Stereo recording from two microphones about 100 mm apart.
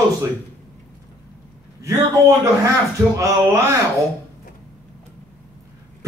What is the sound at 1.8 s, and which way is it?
Speech, 30° right (ahead or behind).